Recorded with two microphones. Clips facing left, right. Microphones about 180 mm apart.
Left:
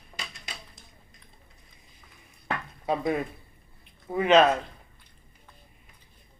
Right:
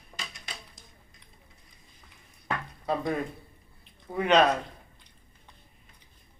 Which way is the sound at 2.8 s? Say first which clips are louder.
Left 2 dB; 10° left (ahead or behind).